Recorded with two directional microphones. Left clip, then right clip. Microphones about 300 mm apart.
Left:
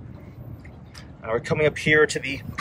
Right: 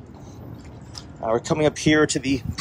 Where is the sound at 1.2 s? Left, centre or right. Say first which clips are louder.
Right 2 dB; centre.